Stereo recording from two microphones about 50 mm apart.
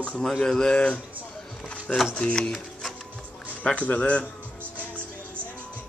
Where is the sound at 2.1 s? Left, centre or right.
Left.